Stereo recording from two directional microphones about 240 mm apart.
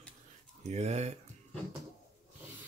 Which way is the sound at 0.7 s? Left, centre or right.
Right.